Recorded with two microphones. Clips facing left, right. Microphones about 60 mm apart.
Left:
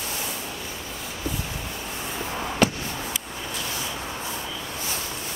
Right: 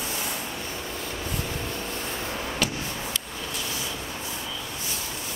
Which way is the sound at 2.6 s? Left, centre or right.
Left.